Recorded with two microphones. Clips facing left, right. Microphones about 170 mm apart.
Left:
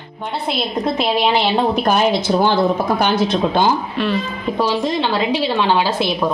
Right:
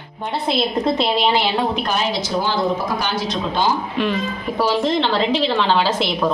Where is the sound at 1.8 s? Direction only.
55° left (ahead or behind).